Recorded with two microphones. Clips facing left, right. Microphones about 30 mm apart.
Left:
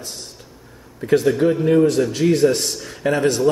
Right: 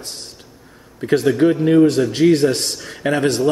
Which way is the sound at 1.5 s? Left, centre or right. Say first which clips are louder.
Right 3 dB; right.